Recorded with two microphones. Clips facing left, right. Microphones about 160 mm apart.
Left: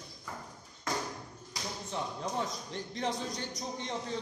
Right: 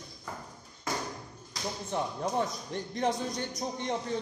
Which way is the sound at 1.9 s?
55° right (ahead or behind).